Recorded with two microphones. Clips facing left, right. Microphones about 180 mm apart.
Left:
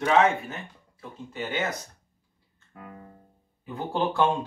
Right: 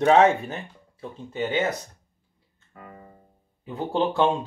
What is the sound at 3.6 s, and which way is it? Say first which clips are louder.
Speech: right 3 dB; 20° right (ahead or behind).